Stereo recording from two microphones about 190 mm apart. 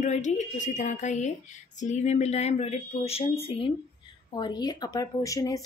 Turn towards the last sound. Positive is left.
turn(degrees=15)  # may be behind; listen again after turning